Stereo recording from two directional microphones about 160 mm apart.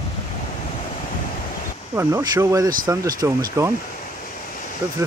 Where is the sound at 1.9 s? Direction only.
15° right (ahead or behind).